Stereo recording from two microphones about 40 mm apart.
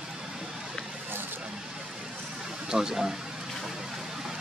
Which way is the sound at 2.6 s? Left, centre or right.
Centre.